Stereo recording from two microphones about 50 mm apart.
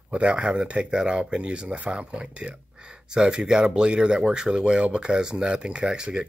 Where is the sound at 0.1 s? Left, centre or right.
Centre.